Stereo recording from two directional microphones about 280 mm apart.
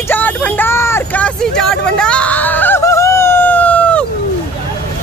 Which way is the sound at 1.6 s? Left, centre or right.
Centre.